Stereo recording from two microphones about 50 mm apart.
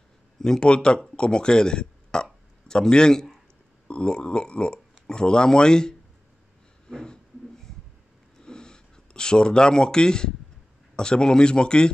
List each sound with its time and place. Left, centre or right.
0.4 s speech: centre
8.4 s a sound: centre
11.0 s speech: centre